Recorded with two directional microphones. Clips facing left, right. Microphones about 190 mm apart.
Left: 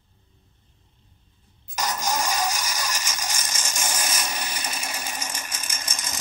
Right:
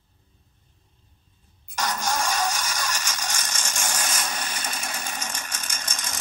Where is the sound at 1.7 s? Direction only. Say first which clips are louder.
Even; 10° left (ahead or behind).